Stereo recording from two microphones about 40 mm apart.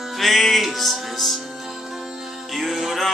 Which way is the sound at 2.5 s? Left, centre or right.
Centre.